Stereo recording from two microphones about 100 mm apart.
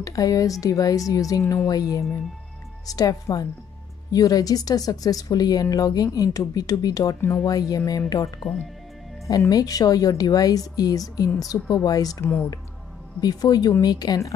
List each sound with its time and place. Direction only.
0.0 s a woman's voice: 35° left (ahead or behind)